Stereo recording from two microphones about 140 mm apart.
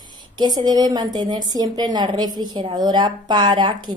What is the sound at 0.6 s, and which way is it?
A woman's voice, 30° right (ahead or behind).